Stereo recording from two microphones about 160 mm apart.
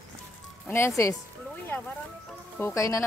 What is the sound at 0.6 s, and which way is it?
Speech, 15° left (ahead or behind).